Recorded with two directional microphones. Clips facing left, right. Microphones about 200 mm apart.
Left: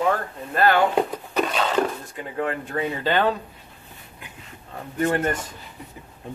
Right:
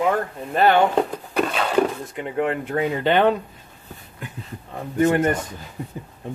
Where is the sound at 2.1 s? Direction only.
25° right (ahead or behind).